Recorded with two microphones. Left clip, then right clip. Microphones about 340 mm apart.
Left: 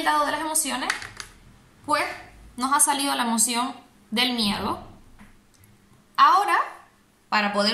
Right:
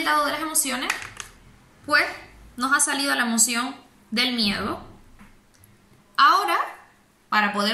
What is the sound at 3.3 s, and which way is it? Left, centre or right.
A woman's voice, left.